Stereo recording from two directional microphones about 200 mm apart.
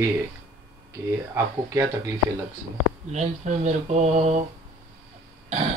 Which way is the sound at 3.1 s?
35° right (ahead or behind).